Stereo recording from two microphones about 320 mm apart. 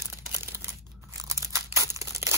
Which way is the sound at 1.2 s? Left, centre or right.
Centre.